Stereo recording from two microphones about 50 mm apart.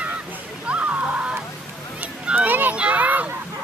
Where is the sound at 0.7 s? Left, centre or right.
Right.